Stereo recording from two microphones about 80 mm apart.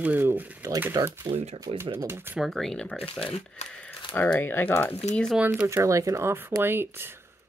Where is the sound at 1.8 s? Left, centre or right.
Right.